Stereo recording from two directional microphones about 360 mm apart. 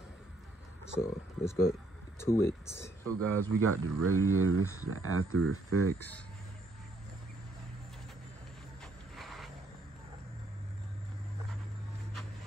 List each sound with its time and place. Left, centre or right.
0.9 s speech: centre
3.2 s speech: right
5.9 s speech: centre
9.1 s a sound: centre